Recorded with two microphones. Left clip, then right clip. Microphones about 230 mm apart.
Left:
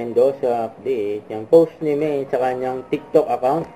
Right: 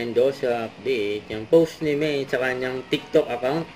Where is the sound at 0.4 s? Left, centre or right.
Right.